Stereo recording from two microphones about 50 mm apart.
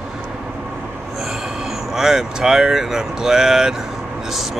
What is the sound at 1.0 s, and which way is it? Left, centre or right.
Vehicle, centre.